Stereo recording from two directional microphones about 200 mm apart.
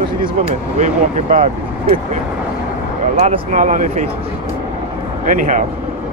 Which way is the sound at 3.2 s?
35° right (ahead or behind).